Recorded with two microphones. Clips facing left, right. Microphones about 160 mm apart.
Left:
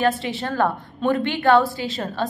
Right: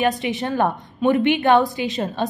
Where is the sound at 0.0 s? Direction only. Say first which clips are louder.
Right 1 dB; 20° right (ahead or behind).